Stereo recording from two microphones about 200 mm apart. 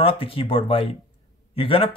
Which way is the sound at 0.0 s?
25° left (ahead or behind).